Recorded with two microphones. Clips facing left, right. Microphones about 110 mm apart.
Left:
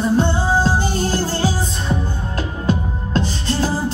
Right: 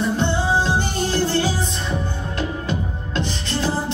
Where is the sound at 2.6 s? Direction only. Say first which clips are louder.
Left 5 dB; 40° left (ahead or behind).